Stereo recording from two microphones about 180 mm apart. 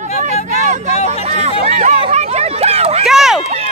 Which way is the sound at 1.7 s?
40° right (ahead or behind).